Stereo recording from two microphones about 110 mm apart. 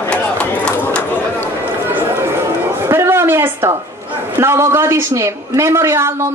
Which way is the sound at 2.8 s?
20° right (ahead or behind).